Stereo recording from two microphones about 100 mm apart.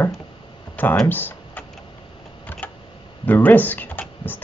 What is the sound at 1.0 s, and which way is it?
Typing, 20° left (ahead or behind).